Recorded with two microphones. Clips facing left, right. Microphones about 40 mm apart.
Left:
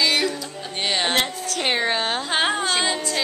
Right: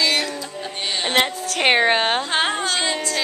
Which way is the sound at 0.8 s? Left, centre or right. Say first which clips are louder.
Left 2 dB; centre.